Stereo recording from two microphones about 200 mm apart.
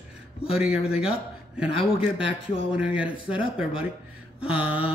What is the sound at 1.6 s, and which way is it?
Speech, 25° left (ahead or behind).